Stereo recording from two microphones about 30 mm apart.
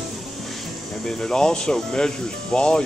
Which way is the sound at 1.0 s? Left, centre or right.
Left.